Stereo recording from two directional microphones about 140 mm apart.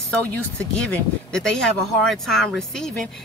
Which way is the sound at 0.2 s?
10° left (ahead or behind).